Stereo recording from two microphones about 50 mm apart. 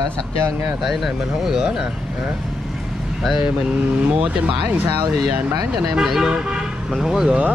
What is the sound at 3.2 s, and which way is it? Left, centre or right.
Speech, centre.